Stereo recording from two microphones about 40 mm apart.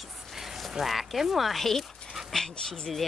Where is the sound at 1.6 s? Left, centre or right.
Centre.